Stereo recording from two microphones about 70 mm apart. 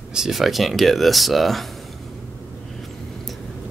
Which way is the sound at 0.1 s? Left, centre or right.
Centre.